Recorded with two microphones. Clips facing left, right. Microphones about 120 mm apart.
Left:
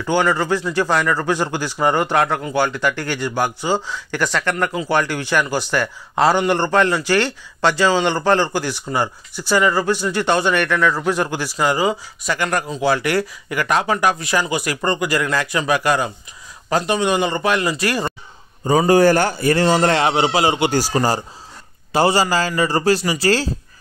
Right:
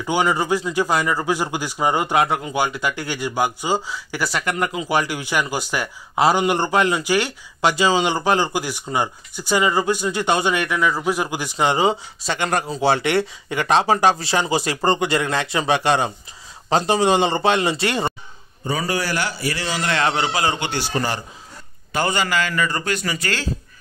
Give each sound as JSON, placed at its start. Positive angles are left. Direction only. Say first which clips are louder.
{"t": 0.0, "sound": "speech", "louder": "left 2 dB", "side_deg": -15}
{"t": 18.9, "sound": "a man's voice", "louder": "left 13 dB", "side_deg": 45}
{"t": 20.0, "sound": "a man's voice", "louder": "left 4 dB", "side_deg": 20}
{"t": 20.7, "sound": "speech", "louder": "left 5 dB", "side_deg": 40}